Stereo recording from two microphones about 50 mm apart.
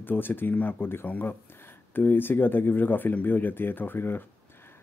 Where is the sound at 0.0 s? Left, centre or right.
Left.